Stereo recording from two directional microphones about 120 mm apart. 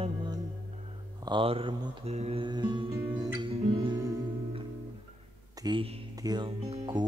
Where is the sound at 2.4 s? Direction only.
40° right (ahead or behind).